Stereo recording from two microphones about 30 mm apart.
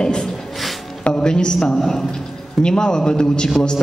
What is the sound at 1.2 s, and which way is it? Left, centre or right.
Speech, left.